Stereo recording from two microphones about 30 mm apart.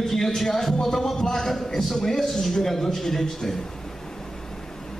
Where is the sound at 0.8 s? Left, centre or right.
Centre.